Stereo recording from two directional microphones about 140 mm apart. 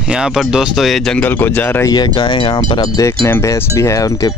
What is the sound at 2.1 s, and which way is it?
Speech, 35° left (ahead or behind).